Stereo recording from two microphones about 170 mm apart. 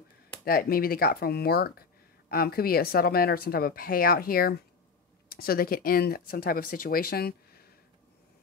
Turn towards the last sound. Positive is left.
turn(degrees=65)  # may be behind; listen again after turning